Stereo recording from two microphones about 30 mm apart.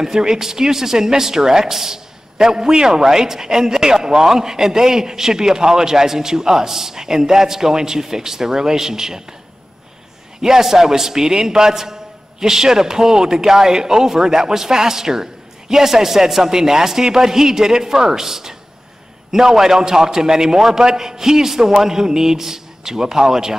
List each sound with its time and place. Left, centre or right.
0.0 s speech: right
10.4 s a man's voice: centre